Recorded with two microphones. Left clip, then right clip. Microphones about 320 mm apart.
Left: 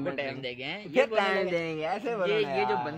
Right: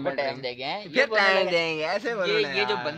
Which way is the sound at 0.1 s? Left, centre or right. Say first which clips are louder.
Right 5 dB; centre.